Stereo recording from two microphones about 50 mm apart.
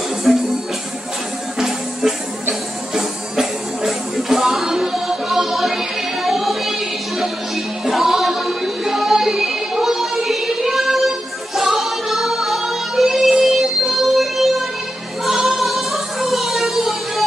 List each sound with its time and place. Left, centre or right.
0.3 s music: centre
1.6 s music: centre
15.2 s female singing: centre